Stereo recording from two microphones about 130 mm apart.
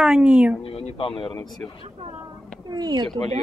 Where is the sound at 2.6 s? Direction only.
30° right (ahead or behind).